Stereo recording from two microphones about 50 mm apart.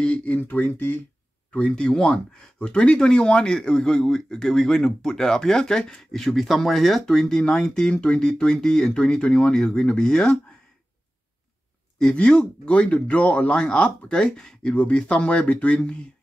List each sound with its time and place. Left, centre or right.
0.0 s speech: left
1.5 s speech: centre
12.0 s speech: centre